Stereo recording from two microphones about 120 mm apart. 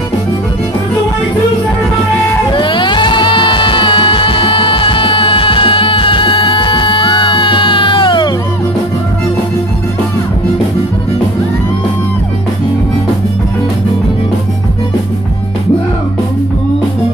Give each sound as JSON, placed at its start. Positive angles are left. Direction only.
{"t": 2.5, "sound": "music", "side_deg": 45}